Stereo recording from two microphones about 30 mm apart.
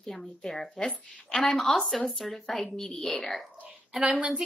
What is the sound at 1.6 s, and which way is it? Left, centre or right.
Speech, centre.